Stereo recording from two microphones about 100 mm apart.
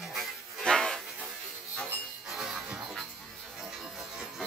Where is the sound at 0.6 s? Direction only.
5° left (ahead or behind).